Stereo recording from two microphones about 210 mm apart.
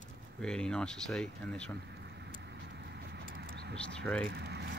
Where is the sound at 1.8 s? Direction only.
55° right (ahead or behind).